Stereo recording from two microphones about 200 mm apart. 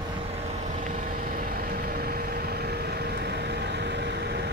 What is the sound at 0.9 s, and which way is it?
Vehicle, 45° right (ahead or behind).